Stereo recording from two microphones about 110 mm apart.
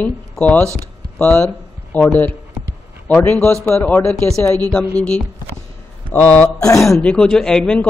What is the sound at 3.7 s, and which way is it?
Speech, 15° left (ahead or behind).